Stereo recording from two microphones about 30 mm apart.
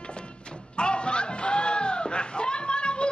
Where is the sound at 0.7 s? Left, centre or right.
Left.